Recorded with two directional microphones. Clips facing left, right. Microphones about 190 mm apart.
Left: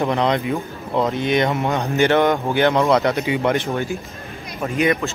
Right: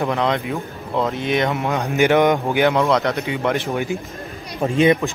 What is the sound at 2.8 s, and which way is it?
Speech, 5° left (ahead or behind).